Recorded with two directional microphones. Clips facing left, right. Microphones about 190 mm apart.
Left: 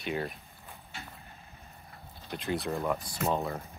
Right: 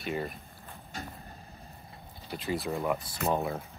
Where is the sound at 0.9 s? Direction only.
40° right (ahead or behind).